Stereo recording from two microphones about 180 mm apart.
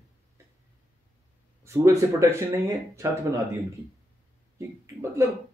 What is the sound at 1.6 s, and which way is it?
Speech, 15° right (ahead or behind).